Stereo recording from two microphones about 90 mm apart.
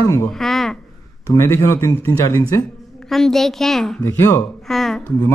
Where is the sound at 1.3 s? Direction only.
30° left (ahead or behind).